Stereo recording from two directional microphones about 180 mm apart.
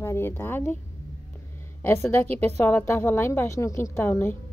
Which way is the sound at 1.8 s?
10° left (ahead or behind).